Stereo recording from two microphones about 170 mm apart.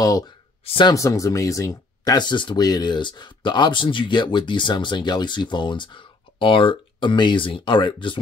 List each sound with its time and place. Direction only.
0.0 s speech: 20° left (ahead or behind)
0.9 s speech: 20° left (ahead or behind)